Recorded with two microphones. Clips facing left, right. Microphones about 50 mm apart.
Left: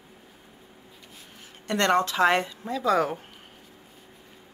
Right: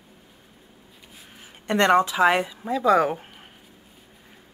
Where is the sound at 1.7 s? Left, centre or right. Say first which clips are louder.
Right 4 dB; centre.